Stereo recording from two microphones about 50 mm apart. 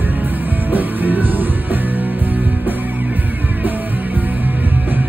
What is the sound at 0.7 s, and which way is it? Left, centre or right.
Music, right.